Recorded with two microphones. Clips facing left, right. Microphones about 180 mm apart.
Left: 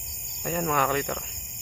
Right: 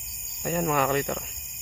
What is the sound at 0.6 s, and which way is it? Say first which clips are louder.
Speech: right 1 dB; centre (ahead or behind).